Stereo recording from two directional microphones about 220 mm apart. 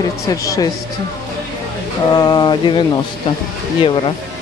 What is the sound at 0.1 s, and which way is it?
Speech, 15° left (ahead or behind).